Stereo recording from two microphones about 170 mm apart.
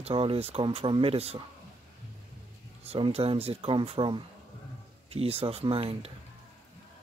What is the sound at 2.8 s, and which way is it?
Speech, 35° right (ahead or behind).